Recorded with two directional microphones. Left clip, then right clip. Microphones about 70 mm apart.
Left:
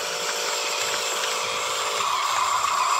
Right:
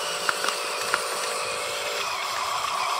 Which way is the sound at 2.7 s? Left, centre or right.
Left.